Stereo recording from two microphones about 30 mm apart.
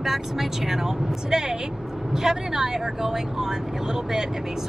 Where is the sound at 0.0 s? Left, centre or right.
Centre.